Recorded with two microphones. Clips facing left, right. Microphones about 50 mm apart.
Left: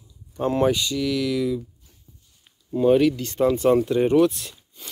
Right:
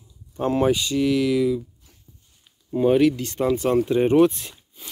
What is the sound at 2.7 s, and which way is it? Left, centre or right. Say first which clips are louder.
Speech: even; centre.